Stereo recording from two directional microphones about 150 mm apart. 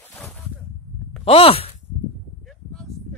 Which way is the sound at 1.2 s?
40° left (ahead or behind).